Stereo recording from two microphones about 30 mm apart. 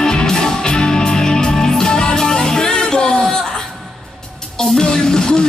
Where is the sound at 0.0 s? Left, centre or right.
Left.